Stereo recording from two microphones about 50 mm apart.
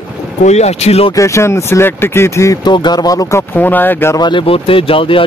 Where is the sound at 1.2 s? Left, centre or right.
Left.